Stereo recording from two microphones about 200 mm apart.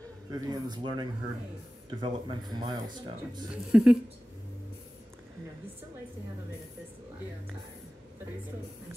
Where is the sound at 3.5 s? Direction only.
5° right (ahead or behind).